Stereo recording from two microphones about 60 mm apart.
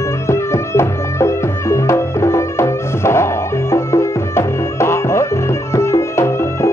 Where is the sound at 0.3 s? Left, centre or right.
Left.